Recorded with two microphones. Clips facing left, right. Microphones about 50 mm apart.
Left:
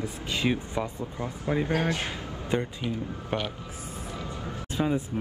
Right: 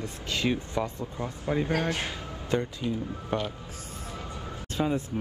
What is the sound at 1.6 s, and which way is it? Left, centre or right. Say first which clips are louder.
Speech: left 1 dB; left.